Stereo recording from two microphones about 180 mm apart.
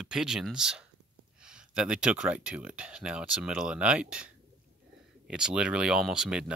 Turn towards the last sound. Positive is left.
turn(degrees=-5)  # may be behind; listen again after turning